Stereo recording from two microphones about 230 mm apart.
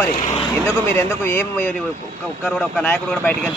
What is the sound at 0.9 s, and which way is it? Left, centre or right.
A man's voice, centre.